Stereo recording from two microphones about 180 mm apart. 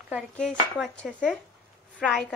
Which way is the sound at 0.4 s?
5° left (ahead or behind).